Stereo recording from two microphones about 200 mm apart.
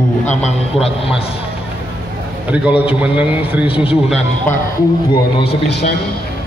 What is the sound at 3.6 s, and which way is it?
Speech, 25° left (ahead or behind).